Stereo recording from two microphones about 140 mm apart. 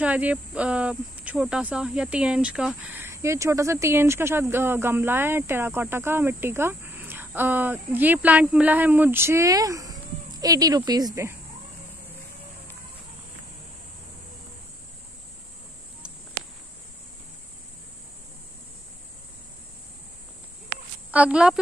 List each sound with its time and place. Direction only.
0.0 s speech: 10° right (ahead or behind)
3.0 s speech: 20° right (ahead or behind)
21.1 s speech: 10° right (ahead or behind)